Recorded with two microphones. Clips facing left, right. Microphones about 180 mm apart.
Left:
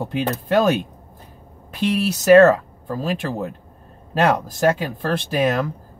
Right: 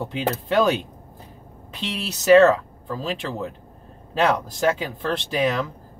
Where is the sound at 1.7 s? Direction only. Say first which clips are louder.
Left 10 dB; 25° right (ahead or behind).